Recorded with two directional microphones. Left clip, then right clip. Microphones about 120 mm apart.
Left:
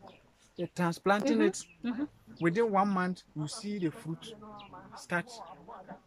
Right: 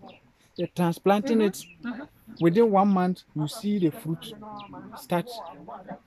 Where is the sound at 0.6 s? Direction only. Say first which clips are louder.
Right 6 dB; 20° right (ahead or behind).